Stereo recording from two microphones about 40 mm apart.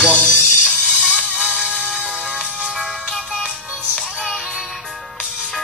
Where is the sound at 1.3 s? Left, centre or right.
Right.